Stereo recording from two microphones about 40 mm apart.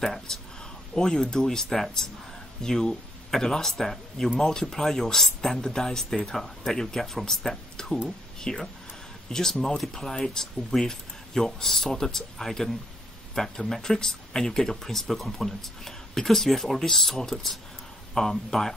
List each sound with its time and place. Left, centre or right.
0.0 s speech: centre